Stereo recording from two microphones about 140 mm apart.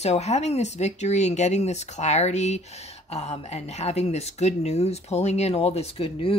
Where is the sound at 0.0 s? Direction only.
50° left (ahead or behind).